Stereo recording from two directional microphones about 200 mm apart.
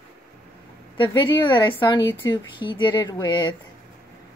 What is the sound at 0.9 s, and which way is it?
Speech, 25° left (ahead or behind).